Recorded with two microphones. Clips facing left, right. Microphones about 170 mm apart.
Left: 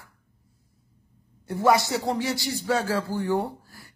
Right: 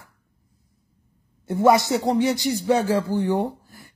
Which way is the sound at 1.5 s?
20° right (ahead or behind).